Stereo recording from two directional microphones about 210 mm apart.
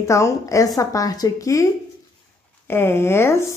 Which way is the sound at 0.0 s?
15° left (ahead or behind).